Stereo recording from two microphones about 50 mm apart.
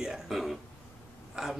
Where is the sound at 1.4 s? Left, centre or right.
Centre.